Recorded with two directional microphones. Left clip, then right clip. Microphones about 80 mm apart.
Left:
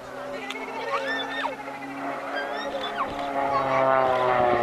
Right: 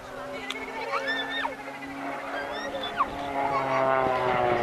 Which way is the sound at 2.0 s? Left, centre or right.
Centre.